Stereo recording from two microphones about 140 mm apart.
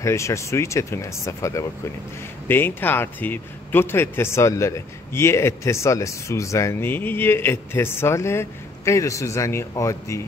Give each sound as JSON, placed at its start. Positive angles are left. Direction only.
{"t": 0.0, "sound": "a man's voice", "side_deg": 20}